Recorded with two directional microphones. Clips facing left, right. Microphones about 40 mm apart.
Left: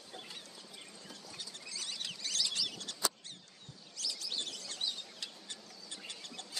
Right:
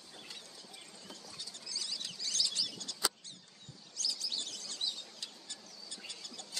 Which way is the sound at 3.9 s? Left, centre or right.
Left.